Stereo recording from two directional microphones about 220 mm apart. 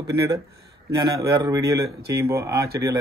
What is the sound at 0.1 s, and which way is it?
Speech, 45° right (ahead or behind).